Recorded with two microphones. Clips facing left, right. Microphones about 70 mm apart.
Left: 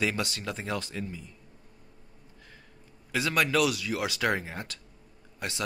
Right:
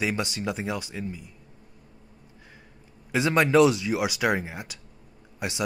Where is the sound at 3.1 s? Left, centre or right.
Right.